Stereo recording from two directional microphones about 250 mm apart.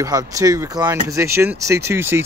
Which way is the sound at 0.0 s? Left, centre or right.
Centre.